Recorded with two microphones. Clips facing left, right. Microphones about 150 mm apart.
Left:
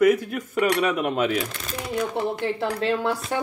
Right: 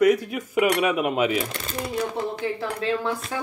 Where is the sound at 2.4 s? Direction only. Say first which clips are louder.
Left 2 dB; 70° left (ahead or behind).